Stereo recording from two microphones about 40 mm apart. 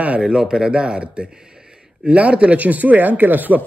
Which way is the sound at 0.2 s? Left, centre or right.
Centre.